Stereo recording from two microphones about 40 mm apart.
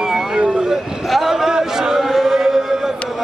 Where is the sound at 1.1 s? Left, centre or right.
Centre.